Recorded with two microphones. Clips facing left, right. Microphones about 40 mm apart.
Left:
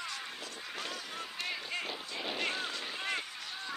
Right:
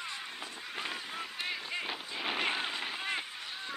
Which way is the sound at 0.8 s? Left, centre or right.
Centre.